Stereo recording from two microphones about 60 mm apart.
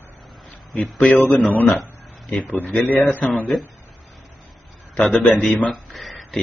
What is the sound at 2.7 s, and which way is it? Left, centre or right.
Speech, left.